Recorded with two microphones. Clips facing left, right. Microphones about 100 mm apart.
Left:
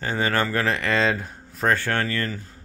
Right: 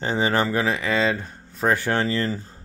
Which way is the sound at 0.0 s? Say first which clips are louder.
Right 2 dB; 20° right (ahead or behind).